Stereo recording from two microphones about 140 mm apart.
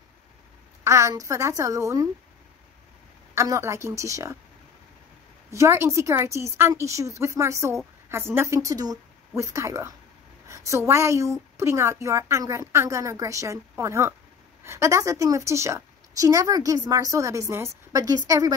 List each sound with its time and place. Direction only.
0.8 s a woman's voice: 20° right (ahead or behind)
3.3 s a woman's voice: 20° right (ahead or behind)
5.5 s a woman's voice: 20° right (ahead or behind)